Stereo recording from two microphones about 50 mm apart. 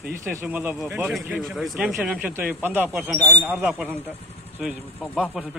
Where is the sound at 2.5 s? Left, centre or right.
Right.